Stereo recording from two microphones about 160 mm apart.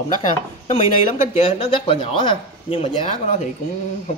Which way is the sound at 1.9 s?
35° left (ahead or behind).